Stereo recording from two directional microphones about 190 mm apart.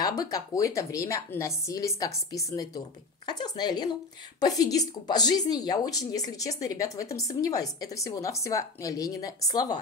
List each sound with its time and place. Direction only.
0.0 s a woman's voice: 20° left (ahead or behind)